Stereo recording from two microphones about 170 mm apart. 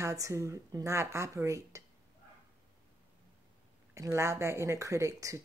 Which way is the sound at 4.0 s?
20° right (ahead or behind).